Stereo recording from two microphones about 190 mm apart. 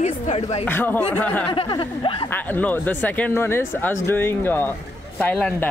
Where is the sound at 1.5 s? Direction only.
25° left (ahead or behind).